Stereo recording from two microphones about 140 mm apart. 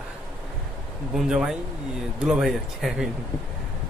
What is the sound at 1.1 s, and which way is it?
Speech, 5° right (ahead or behind).